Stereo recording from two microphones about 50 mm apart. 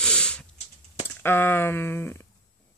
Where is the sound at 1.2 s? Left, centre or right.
Left.